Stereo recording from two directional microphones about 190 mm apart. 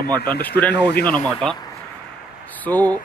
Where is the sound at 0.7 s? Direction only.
65° left (ahead or behind).